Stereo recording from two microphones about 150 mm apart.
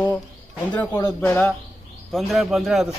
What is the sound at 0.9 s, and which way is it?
Speech, 20° left (ahead or behind).